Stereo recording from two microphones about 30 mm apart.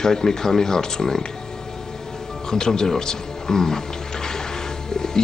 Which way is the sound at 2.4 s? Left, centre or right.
Left.